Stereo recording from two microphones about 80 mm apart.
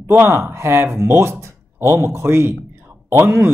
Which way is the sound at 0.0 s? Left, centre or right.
Right.